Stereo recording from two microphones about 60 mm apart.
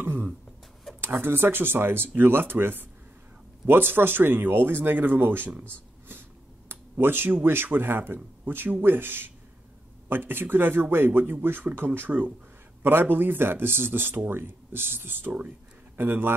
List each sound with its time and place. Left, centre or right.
0.0 s beatboxing: right
1.0 s speech: right
6.7 s a sound: right
7.4 s speech: right